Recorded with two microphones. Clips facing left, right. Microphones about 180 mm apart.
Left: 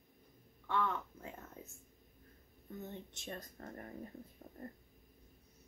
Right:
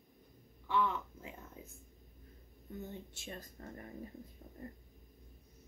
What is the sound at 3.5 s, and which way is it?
Speech, 45° left (ahead or behind).